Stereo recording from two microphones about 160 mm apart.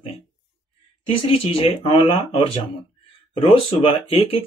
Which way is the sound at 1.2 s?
35° left (ahead or behind).